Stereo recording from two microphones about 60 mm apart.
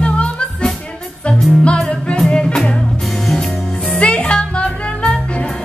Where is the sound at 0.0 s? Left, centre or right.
Centre.